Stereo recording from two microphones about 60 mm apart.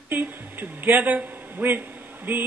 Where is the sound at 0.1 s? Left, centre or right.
Right.